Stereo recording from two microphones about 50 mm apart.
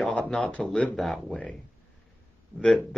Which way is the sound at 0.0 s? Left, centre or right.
Centre.